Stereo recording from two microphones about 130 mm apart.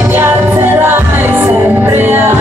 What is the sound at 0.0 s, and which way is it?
Music, 15° right (ahead or behind).